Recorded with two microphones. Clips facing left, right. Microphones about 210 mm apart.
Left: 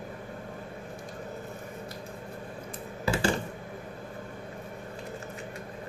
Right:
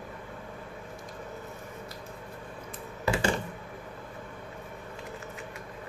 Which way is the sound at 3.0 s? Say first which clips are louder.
Even; 30° left (ahead or behind).